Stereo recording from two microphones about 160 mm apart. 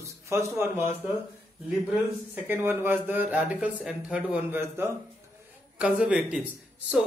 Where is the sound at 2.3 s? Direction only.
10° right (ahead or behind).